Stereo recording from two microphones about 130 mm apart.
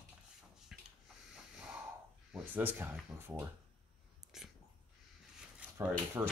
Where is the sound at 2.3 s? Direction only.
15° right (ahead or behind).